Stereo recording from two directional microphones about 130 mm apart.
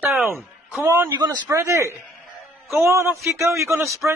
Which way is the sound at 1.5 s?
20° right (ahead or behind).